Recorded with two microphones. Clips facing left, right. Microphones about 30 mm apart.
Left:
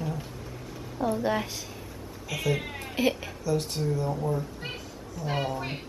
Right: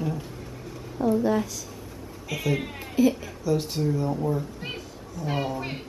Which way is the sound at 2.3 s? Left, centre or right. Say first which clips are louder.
Right 1 dB; centre.